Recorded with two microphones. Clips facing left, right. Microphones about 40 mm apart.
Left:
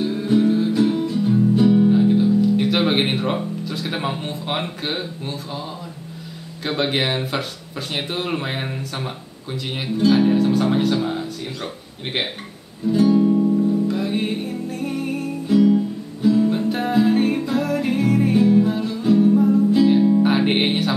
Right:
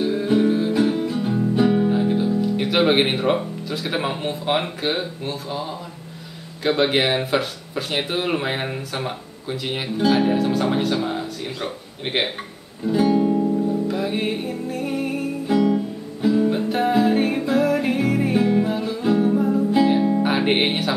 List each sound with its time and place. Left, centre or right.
0.0 s music: centre
6.6 s speech: centre
12.8 s music: centre
15.4 s guitar: centre
16.2 s music: centre